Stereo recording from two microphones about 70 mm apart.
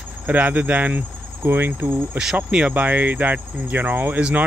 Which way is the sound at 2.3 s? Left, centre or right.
Centre.